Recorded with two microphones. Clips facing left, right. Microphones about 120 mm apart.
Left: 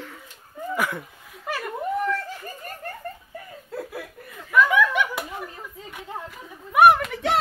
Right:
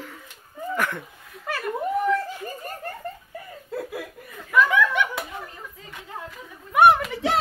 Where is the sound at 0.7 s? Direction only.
10° left (ahead or behind).